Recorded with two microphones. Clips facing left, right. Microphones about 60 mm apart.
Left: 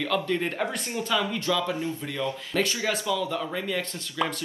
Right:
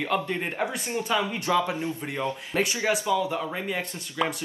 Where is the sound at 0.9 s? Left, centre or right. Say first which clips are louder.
Right 1 dB; right.